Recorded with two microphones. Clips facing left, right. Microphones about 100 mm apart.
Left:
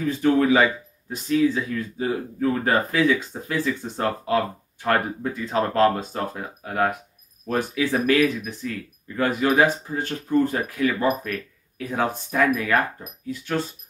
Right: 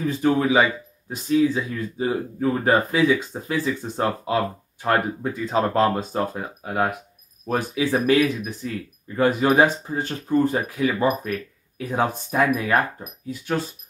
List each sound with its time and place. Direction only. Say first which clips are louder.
0.2 s speech: left 1 dB; 15° right (ahead or behind)